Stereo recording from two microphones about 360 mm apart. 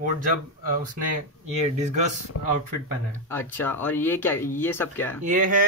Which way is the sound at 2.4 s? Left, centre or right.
Left.